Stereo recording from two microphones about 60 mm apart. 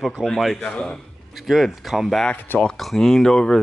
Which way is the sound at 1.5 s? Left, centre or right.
Centre.